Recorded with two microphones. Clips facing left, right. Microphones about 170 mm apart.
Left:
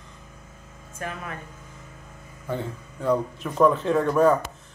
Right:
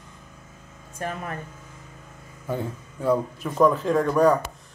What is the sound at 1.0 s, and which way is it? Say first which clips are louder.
Speech: right 3 dB; 35° right (ahead or behind).